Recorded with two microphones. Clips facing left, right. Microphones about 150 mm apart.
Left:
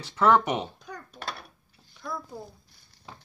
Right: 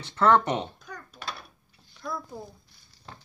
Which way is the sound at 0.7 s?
25° left (ahead or behind).